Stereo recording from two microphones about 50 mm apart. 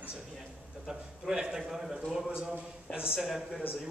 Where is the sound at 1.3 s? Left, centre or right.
Centre.